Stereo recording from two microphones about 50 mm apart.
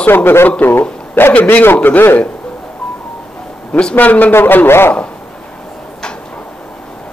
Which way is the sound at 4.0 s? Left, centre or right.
Left.